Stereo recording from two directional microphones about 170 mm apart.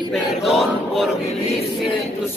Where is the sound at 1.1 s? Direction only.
35° left (ahead or behind).